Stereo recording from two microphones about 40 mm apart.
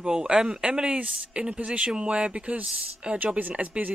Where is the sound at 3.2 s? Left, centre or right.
Right.